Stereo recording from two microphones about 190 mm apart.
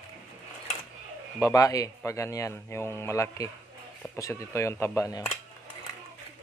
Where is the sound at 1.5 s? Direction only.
15° left (ahead or behind).